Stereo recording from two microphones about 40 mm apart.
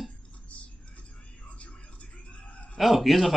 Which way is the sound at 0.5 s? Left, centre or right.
Left.